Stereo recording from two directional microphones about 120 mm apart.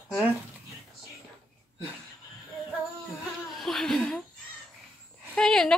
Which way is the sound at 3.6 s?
Centre (ahead or behind).